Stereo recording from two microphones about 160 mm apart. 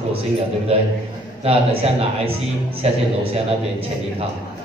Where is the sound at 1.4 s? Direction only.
40° right (ahead or behind).